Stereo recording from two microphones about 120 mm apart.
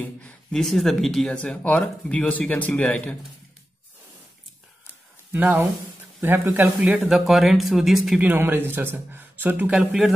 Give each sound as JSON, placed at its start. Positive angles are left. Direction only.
{"t": 0.0, "sound": "speech", "side_deg": 10}
{"t": 5.3, "sound": "speech", "side_deg": -15}
{"t": 8.3, "sound": "speech", "side_deg": -15}
{"t": 9.8, "sound": "speech", "side_deg": 0}